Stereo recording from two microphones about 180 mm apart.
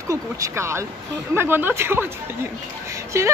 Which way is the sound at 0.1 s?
15° right (ahead or behind).